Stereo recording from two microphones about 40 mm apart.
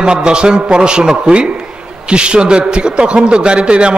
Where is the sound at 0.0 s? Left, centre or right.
Right.